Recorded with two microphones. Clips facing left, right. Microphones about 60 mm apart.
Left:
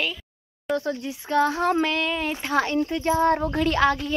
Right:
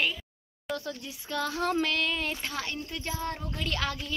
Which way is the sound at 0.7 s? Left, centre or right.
Left.